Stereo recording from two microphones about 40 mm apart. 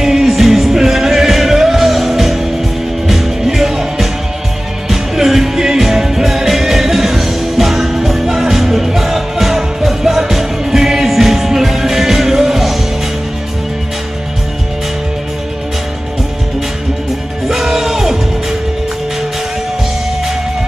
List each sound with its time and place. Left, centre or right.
0.0 s music: centre
17.5 s music: centre